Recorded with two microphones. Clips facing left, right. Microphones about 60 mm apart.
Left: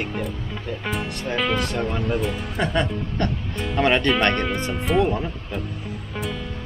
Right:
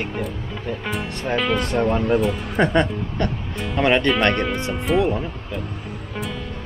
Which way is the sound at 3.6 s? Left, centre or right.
Centre.